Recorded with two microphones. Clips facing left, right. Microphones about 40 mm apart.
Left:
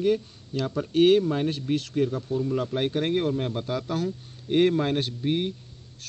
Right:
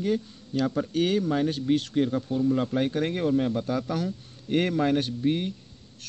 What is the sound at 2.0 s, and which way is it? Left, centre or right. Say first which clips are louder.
Speech: right 1 dB; right.